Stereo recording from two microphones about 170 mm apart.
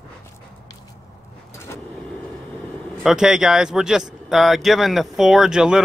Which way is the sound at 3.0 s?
5° right (ahead or behind).